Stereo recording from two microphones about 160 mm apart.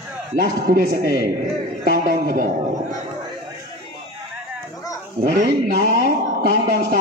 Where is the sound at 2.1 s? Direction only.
55° right (ahead or behind).